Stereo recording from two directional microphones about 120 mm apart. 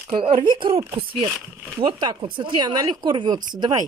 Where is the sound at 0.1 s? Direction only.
45° right (ahead or behind).